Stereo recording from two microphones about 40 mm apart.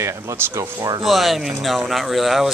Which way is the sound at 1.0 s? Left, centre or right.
Centre.